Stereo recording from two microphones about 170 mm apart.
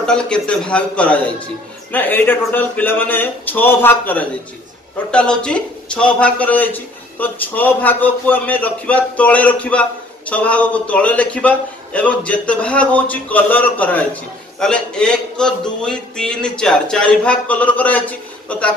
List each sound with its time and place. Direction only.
0.0 s a man's voice: 5° left (ahead or behind)